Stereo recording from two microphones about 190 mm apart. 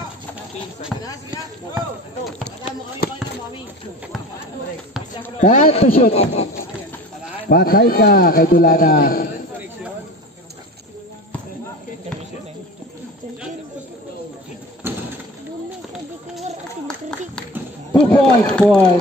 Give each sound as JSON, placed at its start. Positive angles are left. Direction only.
{"t": 0.9, "sound": "speech", "side_deg": -5}
{"t": 2.2, "sound": "speech", "side_deg": 0}
{"t": 5.4, "sound": "a man's voice", "side_deg": 40}
{"t": 7.4, "sound": "a man's voice", "side_deg": 50}
{"t": 14.8, "sound": "bird", "side_deg": -10}
{"t": 17.9, "sound": "speech", "side_deg": 5}